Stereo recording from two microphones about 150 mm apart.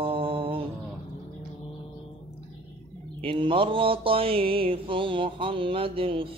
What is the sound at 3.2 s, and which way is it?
Mantra, 35° right (ahead or behind).